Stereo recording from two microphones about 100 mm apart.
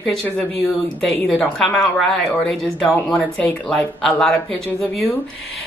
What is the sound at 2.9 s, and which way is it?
A woman's voice, 15° left (ahead or behind).